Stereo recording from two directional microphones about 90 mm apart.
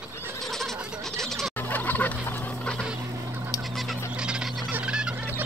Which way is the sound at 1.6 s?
20° left (ahead or behind).